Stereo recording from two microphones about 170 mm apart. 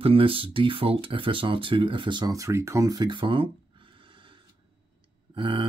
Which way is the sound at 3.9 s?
30° right (ahead or behind).